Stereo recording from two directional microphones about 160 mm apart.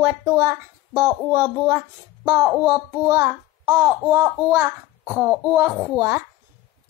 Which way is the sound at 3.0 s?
25° right (ahead or behind).